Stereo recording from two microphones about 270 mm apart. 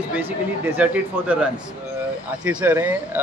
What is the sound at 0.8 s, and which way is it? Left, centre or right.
Speech, centre.